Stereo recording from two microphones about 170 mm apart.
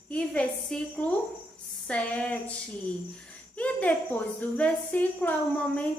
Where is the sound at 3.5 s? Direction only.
10° left (ahead or behind).